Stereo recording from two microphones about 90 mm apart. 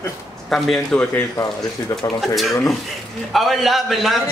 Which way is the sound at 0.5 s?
5° left (ahead or behind).